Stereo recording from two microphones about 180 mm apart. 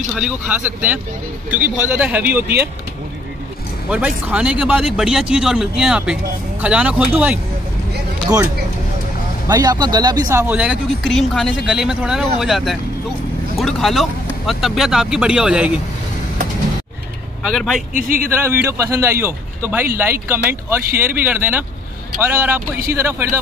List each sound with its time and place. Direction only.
0.1 s speech: 5° right (ahead or behind)
3.9 s speech: 5° right (ahead or behind)
9.5 s speech: 20° right (ahead or behind); by 15.8 s 5° right (ahead or behind)
17.4 s speech: centre (ahead or behind)
17.9 s speech: 50° right (ahead or behind)
18.4 s speech: 10° right (ahead or behind)